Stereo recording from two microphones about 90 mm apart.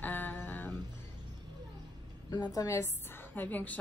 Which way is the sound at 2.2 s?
50° left (ahead or behind).